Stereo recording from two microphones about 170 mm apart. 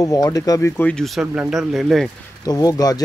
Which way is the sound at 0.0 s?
20° left (ahead or behind).